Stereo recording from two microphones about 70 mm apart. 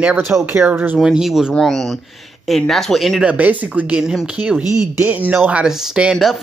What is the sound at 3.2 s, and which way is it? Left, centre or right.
Speech, right.